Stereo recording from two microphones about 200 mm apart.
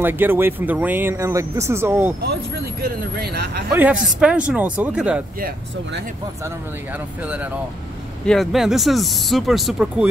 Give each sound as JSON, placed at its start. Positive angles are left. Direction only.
{"t": 0.0, "sound": "speech", "side_deg": -10}
{"t": 2.2, "sound": "speech", "side_deg": -50}
{"t": 4.2, "sound": "speech", "side_deg": -5}
{"t": 8.3, "sound": "speech", "side_deg": 0}